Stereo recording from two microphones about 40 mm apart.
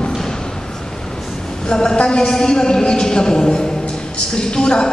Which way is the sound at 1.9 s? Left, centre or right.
Left.